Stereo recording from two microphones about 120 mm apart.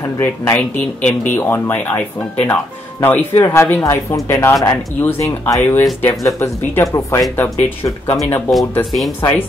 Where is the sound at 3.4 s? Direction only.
30° left (ahead or behind).